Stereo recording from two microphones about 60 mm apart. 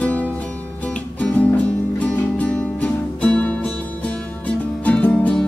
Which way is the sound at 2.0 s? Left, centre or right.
Left.